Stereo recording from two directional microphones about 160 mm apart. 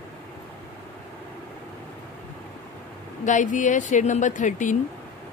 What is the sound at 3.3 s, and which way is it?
A woman's voice, 50° left (ahead or behind).